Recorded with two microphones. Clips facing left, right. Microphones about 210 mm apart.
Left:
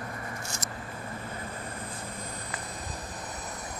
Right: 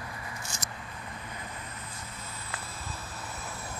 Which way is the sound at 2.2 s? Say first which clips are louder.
Left 4 dB; 15° left (ahead or behind).